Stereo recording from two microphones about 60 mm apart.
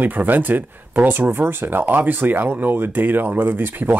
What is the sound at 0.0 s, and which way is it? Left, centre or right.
Speech, right.